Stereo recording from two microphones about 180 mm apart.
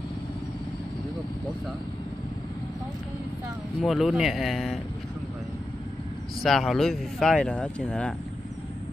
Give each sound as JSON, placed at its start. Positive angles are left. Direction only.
{"t": 3.8, "sound": "speech", "side_deg": 0}
{"t": 6.4, "sound": "speech", "side_deg": 0}